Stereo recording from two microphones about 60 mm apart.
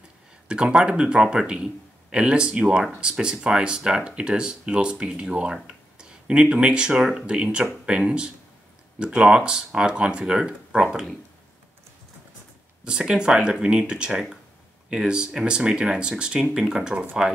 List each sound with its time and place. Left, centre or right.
0.5 s speech: centre
12.8 s speech: centre